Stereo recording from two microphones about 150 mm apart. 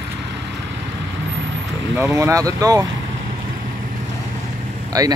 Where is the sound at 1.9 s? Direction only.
20° right (ahead or behind).